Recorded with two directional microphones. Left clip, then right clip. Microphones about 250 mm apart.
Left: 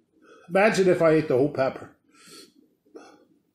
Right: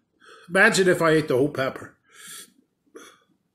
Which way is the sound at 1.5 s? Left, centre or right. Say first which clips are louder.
Left 1 dB; centre.